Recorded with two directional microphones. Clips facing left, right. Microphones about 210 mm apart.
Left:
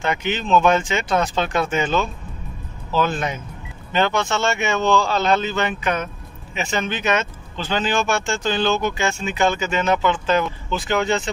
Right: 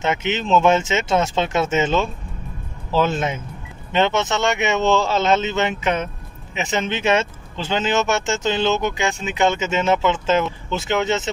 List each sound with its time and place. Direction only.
0.0 s speech: 25° right (ahead or behind)